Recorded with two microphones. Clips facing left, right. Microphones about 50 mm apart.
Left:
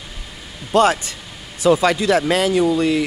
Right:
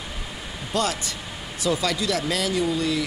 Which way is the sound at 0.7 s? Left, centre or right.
Left.